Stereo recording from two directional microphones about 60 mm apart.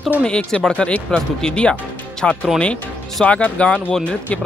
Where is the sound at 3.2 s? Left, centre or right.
Centre.